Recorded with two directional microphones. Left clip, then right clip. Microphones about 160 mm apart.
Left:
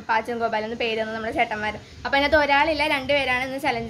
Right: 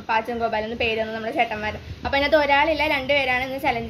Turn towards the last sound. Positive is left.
turn(degrees=0)  # may be behind; listen again after turning